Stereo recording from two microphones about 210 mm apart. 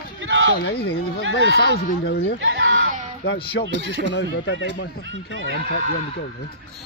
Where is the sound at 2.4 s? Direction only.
65° right (ahead or behind).